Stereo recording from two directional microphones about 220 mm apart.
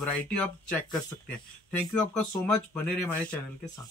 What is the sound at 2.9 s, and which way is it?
Speech, 10° left (ahead or behind).